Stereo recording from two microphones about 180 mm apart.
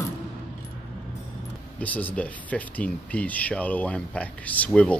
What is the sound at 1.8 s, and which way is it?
Speech, 10° left (ahead or behind).